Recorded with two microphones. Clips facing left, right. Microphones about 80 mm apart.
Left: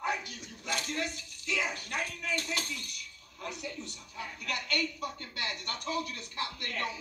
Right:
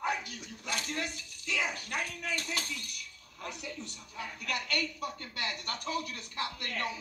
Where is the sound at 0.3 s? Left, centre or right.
Left.